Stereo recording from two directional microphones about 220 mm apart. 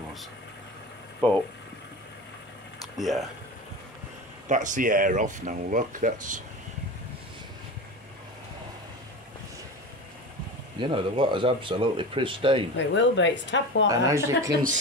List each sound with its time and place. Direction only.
1.2 s speech: 5° left (ahead or behind)
3.0 s speech: centre (ahead or behind)
4.5 s speech: 35° right (ahead or behind)
10.8 s speech: 20° right (ahead or behind)
12.7 s speech: 55° left (ahead or behind)
13.8 s speech: 15° right (ahead or behind)
14.5 s speech: 40° right (ahead or behind)